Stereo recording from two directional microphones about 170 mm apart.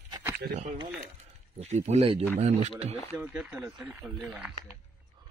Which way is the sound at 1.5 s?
40° right (ahead or behind).